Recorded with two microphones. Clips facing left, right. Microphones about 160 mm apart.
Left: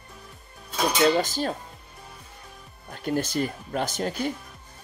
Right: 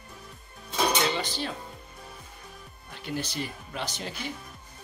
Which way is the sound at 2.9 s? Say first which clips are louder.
Left 7 dB; 45° left (ahead or behind).